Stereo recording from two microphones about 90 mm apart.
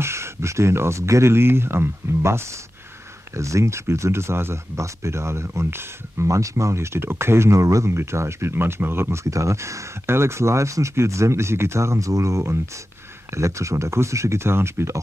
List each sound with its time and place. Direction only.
0.0 s speech: 30° right (ahead or behind)